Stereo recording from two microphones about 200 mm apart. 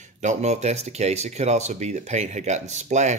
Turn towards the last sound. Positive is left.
turn(degrees=-35)  # may be behind; listen again after turning